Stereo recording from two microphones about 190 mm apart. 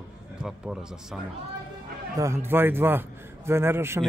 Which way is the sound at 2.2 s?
15° right (ahead or behind).